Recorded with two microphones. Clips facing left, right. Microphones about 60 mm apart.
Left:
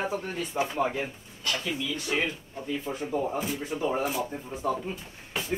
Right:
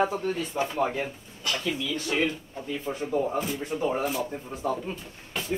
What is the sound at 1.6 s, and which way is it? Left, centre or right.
Speech, centre.